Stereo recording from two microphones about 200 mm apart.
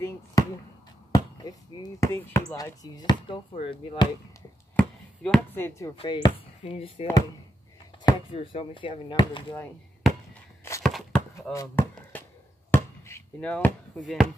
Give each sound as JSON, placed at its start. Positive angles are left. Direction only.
{"t": 0.0, "sound": "basketball bounce", "side_deg": 15}
{"t": 3.5, "sound": "speech", "side_deg": 25}
{"t": 4.7, "sound": "speech", "side_deg": 5}
{"t": 5.9, "sound": "speech", "side_deg": 25}
{"t": 10.8, "sound": "a sound", "side_deg": 0}
{"t": 11.5, "sound": "speech", "side_deg": 15}
{"t": 12.7, "sound": "a sound", "side_deg": 10}
{"t": 13.9, "sound": "speech", "side_deg": 5}